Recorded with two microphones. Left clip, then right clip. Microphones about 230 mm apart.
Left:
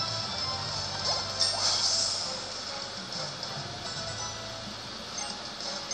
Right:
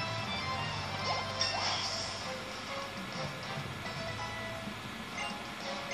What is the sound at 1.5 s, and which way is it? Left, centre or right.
Music, centre.